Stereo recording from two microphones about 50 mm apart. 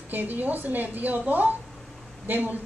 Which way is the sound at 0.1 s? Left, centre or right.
Right.